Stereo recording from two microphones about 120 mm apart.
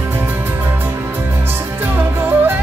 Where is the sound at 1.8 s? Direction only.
20° right (ahead or behind).